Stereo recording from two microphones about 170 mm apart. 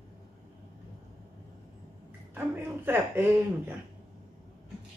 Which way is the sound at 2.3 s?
10° right (ahead or behind).